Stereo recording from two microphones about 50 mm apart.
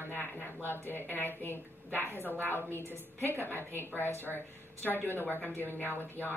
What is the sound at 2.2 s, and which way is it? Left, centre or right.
Speech, right.